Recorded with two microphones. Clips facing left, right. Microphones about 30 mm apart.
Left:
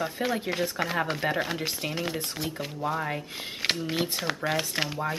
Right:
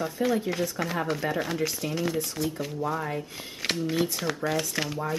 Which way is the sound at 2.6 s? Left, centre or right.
Left.